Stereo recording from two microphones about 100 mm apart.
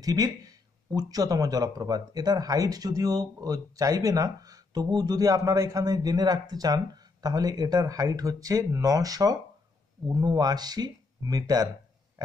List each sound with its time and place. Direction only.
0.0 s speech: 40° right (ahead or behind)